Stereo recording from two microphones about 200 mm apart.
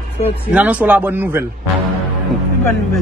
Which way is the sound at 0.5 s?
5° right (ahead or behind).